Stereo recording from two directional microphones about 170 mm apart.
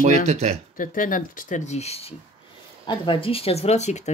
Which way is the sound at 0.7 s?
50° left (ahead or behind).